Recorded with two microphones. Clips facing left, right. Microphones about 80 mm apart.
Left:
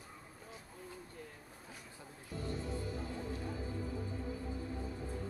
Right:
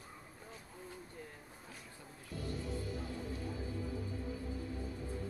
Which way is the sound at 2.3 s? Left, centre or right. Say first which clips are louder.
Left 1 dB; left.